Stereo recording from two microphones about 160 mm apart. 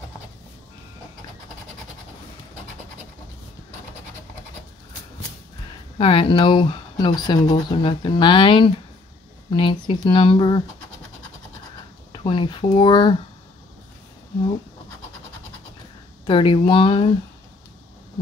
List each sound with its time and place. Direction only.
5.9 s speech: 35° left (ahead or behind)
12.1 s speech: 30° left (ahead or behind)
16.3 s speech: 30° left (ahead or behind)